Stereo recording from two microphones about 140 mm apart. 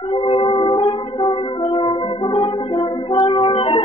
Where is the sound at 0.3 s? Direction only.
35° left (ahead or behind).